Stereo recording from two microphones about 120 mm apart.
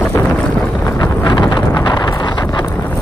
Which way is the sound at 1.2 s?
35° left (ahead or behind).